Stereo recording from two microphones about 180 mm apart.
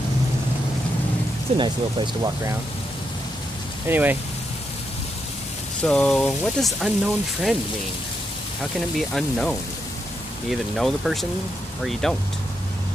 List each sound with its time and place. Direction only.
1.6 s speech: 25° right (ahead or behind)
3.8 s speech: 10° right (ahead or behind)
5.8 s speech: 5° left (ahead or behind)
8.7 s speech: centre (ahead or behind)